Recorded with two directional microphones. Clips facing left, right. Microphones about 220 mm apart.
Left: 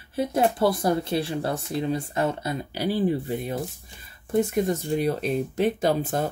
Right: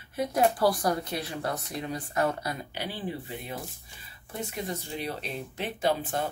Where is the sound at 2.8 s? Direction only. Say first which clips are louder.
Left 14 dB; 40° left (ahead or behind).